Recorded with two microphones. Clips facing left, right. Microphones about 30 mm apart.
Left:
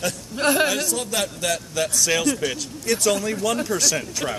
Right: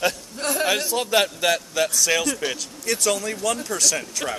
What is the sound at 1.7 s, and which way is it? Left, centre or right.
Speech, centre.